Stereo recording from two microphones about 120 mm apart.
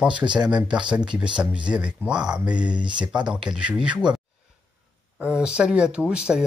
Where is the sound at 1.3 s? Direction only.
10° right (ahead or behind).